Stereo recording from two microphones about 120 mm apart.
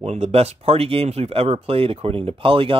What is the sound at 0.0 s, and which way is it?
Speech, 60° right (ahead or behind).